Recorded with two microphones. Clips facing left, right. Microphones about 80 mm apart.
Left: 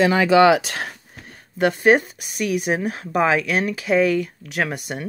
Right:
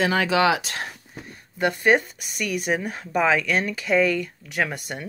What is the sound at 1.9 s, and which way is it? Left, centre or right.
Speech, centre.